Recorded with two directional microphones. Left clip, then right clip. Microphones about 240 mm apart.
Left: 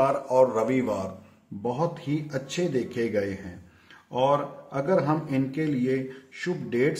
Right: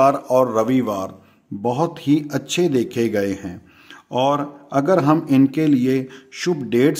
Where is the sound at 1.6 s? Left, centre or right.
Right.